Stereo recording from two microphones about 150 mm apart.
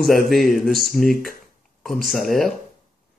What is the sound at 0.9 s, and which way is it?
Speech, 70° left (ahead or behind).